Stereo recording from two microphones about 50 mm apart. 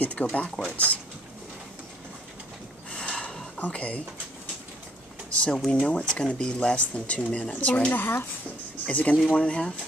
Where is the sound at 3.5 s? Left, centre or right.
Left.